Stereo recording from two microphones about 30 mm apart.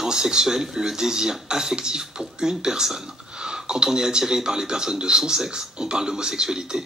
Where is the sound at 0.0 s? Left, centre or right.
Right.